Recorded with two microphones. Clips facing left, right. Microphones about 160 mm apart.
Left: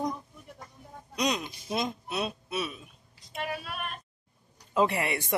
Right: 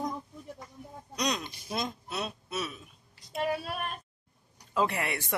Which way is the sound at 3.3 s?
30° right (ahead or behind).